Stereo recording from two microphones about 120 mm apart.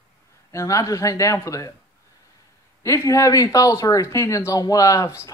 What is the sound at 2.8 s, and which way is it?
Speech, 25° left (ahead or behind).